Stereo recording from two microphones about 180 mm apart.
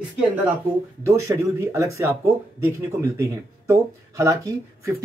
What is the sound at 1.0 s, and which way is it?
Speech, 15° right (ahead or behind).